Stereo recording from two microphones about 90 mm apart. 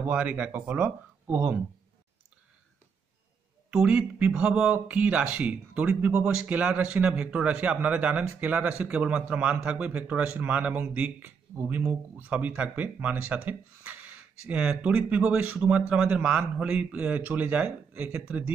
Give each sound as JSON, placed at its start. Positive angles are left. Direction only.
{"t": 0.0, "sound": "speech", "side_deg": -15}
{"t": 3.7, "sound": "a man's voice", "side_deg": -10}